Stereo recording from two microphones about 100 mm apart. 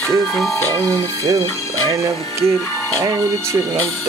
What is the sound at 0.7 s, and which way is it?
Speech, 35° right (ahead or behind).